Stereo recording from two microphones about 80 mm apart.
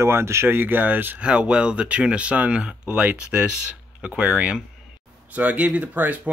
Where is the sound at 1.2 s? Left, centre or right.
Centre.